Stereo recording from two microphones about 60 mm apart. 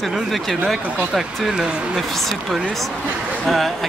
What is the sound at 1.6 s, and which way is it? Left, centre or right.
Speech, centre.